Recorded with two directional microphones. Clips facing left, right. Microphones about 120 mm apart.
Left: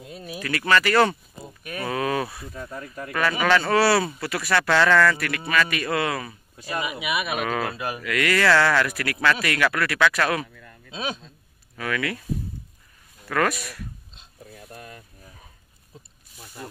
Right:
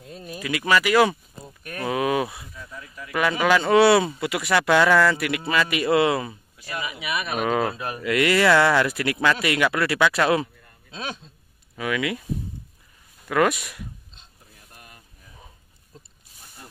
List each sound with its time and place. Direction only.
0.0 s speech: 5° left (ahead or behind)
0.4 s speech: 10° right (ahead or behind)
1.4 s cattle: 5° left (ahead or behind)
1.9 s speech: 15° right (ahead or behind)
2.5 s speech: 50° left (ahead or behind)
3.2 s speech: 15° right (ahead or behind)
6.8 s speech: 15° left (ahead or behind)
8.0 s speech: 25° right (ahead or behind)
10.9 s speech: 15° left (ahead or behind)
11.7 s speech: 15° right (ahead or behind)
13.3 s speech: 15° right (ahead or behind)
14.4 s a sound: 90° left